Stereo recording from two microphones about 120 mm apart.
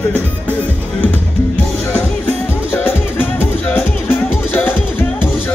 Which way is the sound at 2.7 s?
20° left (ahead or behind).